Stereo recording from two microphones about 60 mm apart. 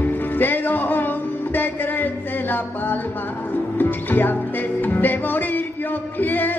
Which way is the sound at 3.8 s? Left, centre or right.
Left.